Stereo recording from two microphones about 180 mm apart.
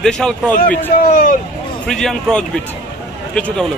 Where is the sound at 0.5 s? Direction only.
50° left (ahead or behind).